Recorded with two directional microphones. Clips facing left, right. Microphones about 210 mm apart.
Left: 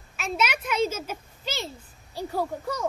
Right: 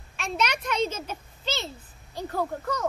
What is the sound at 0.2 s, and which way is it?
A child's voice, 5° left (ahead or behind).